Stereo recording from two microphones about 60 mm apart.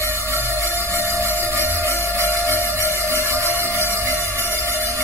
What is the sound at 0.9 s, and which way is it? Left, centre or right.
Music, right.